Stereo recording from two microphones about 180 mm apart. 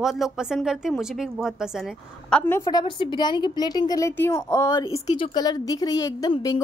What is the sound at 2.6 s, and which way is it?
A woman's voice, 25° left (ahead or behind).